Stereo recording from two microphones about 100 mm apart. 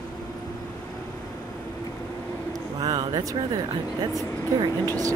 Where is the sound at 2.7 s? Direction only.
45° right (ahead or behind).